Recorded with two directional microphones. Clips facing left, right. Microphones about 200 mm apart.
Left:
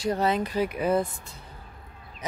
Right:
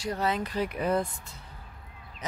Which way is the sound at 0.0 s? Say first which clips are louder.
Left 4 dB; 25° left (ahead or behind).